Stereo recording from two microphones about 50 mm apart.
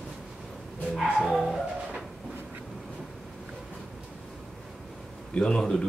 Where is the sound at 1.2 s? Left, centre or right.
Centre.